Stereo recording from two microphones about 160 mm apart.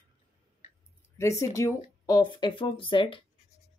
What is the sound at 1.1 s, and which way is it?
Speech, 20° left (ahead or behind).